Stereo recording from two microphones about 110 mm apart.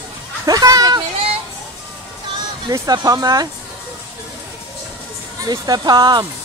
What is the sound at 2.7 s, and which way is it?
Speech, 35° right (ahead or behind).